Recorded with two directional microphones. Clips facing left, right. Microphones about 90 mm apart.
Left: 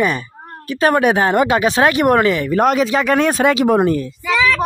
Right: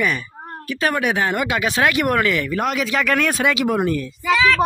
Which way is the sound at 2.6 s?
40° left (ahead or behind).